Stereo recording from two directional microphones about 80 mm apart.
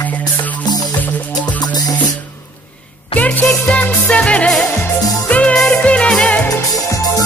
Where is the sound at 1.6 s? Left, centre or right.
Left.